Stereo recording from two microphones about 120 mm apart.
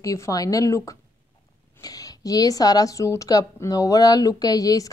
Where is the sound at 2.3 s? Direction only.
30° left (ahead or behind).